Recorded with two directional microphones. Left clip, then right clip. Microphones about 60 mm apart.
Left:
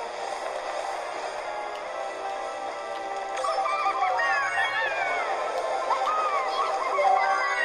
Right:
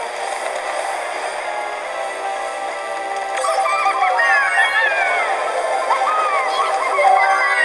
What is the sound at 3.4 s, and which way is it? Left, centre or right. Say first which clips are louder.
Music: right 9 dB; right.